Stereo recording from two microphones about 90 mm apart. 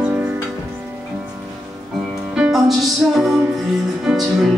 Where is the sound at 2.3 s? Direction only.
10° right (ahead or behind).